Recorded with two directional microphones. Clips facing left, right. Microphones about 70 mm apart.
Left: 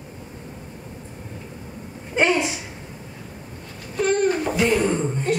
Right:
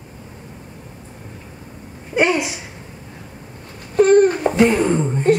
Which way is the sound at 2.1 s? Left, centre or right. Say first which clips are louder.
Right 2 dB; centre.